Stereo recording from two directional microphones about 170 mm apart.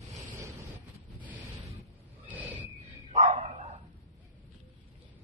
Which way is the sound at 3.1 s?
40° right (ahead or behind).